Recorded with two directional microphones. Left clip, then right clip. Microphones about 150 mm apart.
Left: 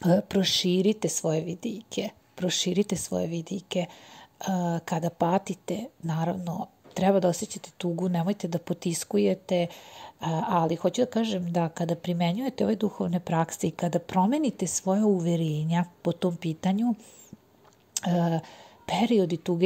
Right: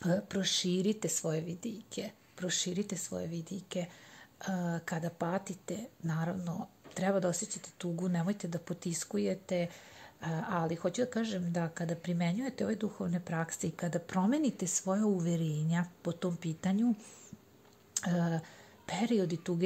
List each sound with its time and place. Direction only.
0.0 s a woman's voice: 35° left (ahead or behind)
17.9 s a woman's voice: 25° left (ahead or behind)